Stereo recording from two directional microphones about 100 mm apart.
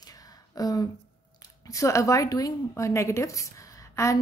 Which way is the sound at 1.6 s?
30° left (ahead or behind).